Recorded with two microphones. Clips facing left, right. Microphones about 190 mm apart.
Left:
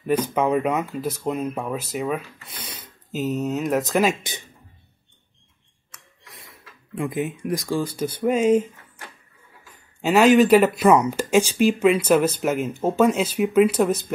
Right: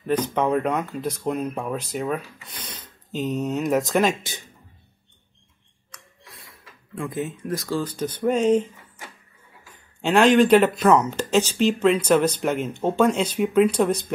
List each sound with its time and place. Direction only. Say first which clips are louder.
0.0 s speech: left 1 dB; 10° left (ahead or behind)
4.2 s speech: left 2 dB; 20° left (ahead or behind)
7.0 s speech: left 3 dB; 15° left (ahead or behind)
10.0 s speech: left 1 dB; 5° left (ahead or behind)